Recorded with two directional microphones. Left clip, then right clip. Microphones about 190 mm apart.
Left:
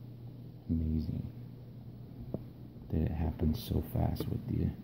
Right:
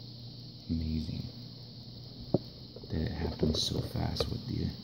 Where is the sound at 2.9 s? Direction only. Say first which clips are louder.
Right 1 dB; 15° left (ahead or behind).